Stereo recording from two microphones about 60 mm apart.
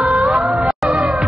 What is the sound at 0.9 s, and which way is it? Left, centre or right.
Music, centre.